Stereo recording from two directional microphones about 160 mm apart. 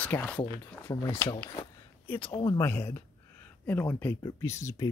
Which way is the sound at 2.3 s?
35° left (ahead or behind).